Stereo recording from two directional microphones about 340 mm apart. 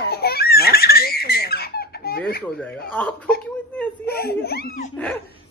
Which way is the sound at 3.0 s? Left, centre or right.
Centre.